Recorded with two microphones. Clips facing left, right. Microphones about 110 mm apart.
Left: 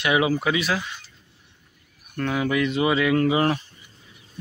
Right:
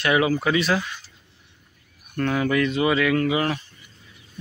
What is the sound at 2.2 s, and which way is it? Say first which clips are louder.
Speech: right 2 dB; 10° left (ahead or behind).